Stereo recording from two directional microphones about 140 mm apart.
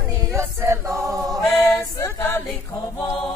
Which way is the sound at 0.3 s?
20° right (ahead or behind).